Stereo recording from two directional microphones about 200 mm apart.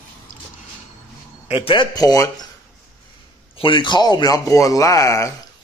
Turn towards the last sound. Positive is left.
turn(degrees=15)  # may be behind; listen again after turning